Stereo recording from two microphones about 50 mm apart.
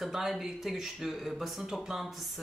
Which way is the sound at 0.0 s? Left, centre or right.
Centre.